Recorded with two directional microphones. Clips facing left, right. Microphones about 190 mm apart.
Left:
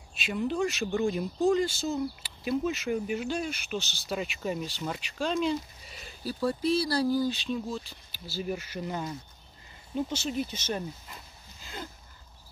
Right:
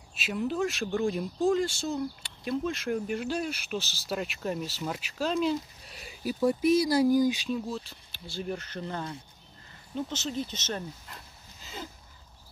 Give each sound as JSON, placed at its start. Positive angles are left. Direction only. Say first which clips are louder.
{"t": 0.1, "sound": "speech", "louder": "even", "side_deg": 0}
{"t": 6.2, "sound": "speech", "louder": "right 3 dB", "side_deg": -20}
{"t": 7.4, "sound": "speech", "louder": "even", "side_deg": 0}